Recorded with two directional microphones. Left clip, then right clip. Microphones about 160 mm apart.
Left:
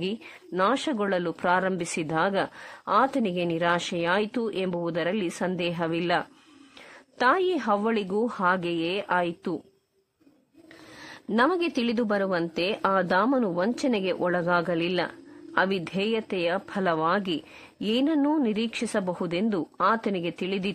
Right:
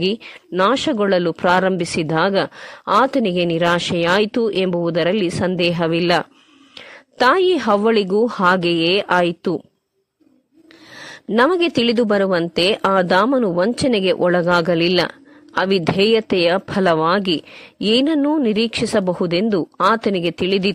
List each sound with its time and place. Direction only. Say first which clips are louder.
0.0 s speech: right 11 dB; 35° right (ahead or behind)
11.2 s speech: right 8 dB; 35° right (ahead or behind)